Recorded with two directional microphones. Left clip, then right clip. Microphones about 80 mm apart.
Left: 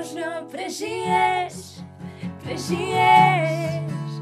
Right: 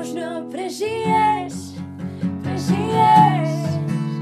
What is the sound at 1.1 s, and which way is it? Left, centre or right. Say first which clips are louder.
Music: right 2 dB; left.